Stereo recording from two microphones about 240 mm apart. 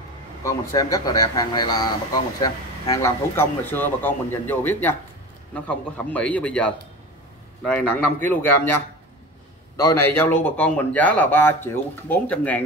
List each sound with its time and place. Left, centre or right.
0.4 s a man's voice: centre